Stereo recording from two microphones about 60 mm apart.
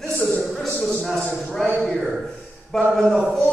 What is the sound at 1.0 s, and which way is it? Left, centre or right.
Speech, centre.